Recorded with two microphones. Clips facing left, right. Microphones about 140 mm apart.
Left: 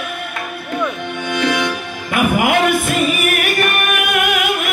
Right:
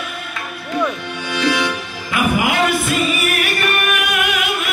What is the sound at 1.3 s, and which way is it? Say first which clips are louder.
Music: even; 55° left (ahead or behind).